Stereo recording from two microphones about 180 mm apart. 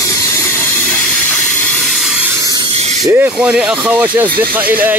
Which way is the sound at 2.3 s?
20° right (ahead or behind).